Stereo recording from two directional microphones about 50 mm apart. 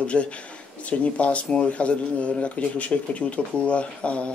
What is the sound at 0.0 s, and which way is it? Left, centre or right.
Speech, left.